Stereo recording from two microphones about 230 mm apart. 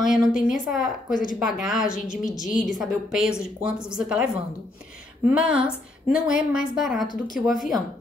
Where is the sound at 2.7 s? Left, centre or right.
Centre.